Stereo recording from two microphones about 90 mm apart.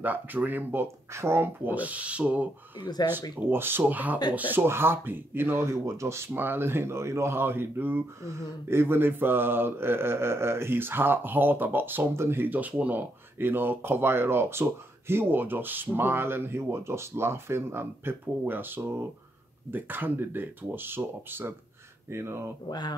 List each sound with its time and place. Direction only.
0.0 s mantra: 20° right (ahead or behind)
2.8 s speech: 50° left (ahead or behind)
3.3 s mantra: 25° right (ahead or behind)
3.8 s speech: 20° right (ahead or behind)
4.4 s mantra: 20° right (ahead or behind)
22.1 s speech: 30° right (ahead or behind)
22.7 s speech: 50° left (ahead or behind)